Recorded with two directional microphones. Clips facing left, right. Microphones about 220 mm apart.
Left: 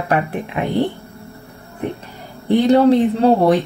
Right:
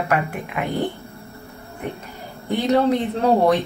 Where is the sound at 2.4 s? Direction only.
30° left (ahead or behind).